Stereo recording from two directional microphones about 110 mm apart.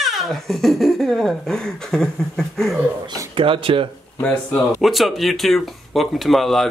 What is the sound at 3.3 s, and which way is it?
Speech, 55° right (ahead or behind).